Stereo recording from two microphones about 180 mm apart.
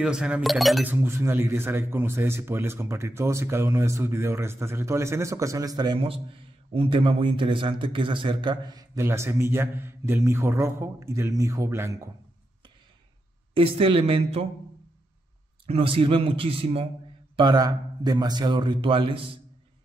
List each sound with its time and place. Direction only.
0.0 s speech: 5° right (ahead or behind)
0.8 s speech: 15° right (ahead or behind)
13.6 s a man's voice: 30° right (ahead or behind)
15.6 s a man's voice: 30° right (ahead or behind)